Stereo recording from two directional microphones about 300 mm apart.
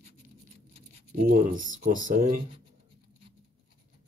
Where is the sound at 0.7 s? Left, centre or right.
Right.